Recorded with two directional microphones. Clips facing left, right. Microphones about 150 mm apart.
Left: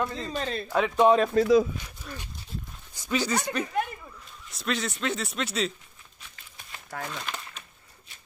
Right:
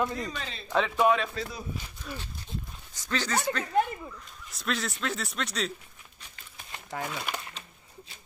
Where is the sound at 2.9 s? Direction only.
10° left (ahead or behind).